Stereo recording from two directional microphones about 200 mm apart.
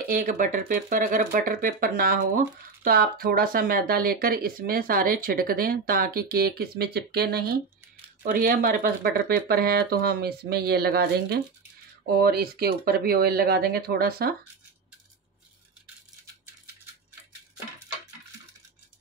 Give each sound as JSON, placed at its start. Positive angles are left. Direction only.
{"t": 0.0, "sound": "speech", "side_deg": -40}